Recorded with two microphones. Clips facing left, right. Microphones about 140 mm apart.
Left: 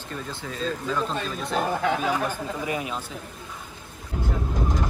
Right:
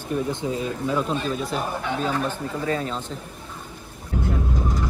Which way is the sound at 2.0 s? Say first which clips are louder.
Right 1 dB; 10° left (ahead or behind).